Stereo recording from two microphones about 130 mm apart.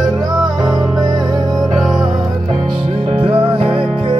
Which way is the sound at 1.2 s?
Centre (ahead or behind).